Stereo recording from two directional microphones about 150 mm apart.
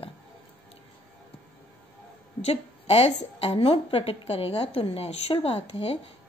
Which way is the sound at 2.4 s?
40° left (ahead or behind).